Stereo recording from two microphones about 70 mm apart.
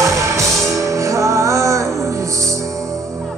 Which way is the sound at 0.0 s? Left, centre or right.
Right.